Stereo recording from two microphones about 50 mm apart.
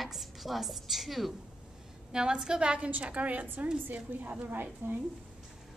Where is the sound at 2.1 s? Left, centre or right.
Centre; by 4.3 s right.